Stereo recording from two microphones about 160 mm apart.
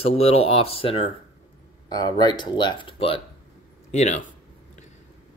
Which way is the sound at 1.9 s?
25° left (ahead or behind).